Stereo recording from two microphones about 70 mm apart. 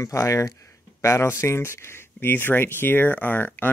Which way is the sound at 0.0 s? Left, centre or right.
Left.